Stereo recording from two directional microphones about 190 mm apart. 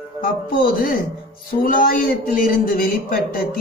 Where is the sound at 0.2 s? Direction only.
50° left (ahead or behind).